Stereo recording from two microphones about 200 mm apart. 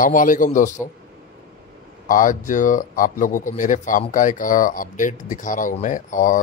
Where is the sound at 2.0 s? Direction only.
40° left (ahead or behind).